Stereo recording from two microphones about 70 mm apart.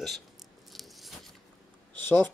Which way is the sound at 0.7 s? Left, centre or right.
Centre.